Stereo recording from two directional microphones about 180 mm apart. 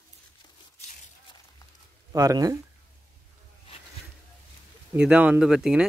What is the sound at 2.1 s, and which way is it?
Speech, 20° right (ahead or behind).